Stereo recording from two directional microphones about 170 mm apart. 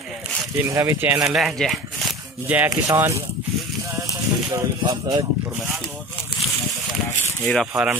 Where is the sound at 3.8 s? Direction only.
20° right (ahead or behind).